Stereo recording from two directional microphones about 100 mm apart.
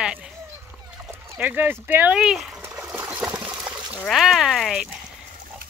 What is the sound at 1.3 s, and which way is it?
Speech, 20° right (ahead or behind).